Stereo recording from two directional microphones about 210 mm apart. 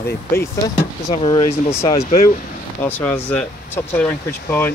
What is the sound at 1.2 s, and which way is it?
Speech, 25° left (ahead or behind).